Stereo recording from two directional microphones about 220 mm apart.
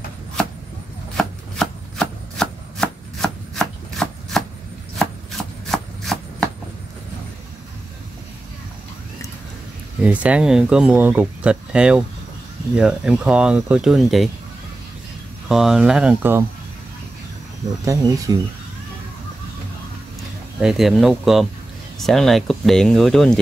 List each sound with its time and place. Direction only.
1.1 s chopping: 5° left (ahead or behind)
10.0 s speech: 5° right (ahead or behind)
15.4 s speech: centre (ahead or behind)
18.3 s speech: 15° right (ahead or behind)
20.6 s speech: centre (ahead or behind)